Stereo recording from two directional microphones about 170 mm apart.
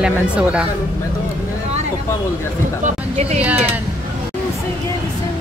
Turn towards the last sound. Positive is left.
turn(degrees=-10)  # may be behind; listen again after turning